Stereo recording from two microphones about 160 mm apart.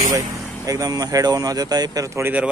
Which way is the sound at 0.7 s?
25° right (ahead or behind).